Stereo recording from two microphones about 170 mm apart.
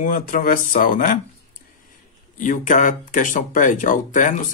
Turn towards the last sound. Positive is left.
turn(degrees=50)  # may be behind; listen again after turning